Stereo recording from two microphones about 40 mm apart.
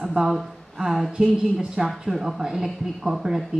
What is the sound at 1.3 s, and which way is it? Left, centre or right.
Speech, centre.